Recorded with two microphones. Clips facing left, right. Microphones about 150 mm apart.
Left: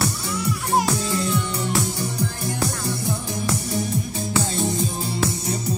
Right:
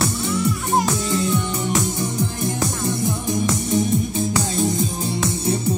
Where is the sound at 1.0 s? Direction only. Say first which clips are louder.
Right 3 dB; 20° right (ahead or behind).